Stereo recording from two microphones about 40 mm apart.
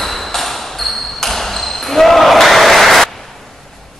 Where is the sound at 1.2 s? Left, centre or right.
Centre.